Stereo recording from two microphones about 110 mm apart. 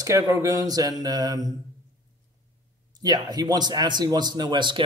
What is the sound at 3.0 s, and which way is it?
Speech, 35° right (ahead or behind).